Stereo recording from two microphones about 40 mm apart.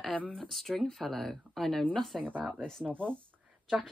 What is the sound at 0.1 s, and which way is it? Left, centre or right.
Speech, left.